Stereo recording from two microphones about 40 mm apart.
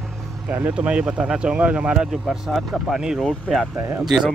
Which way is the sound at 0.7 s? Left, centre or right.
Right.